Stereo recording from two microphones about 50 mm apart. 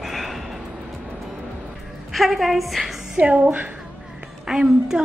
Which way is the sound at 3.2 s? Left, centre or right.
Right.